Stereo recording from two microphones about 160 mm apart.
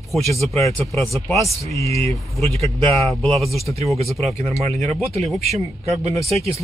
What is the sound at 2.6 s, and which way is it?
Speech, 40° right (ahead or behind).